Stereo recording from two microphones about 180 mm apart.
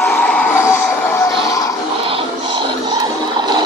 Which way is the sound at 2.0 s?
30° right (ahead or behind).